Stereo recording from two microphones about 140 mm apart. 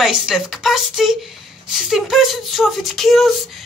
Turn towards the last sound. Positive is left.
turn(degrees=0)  # may be behind; listen again after turning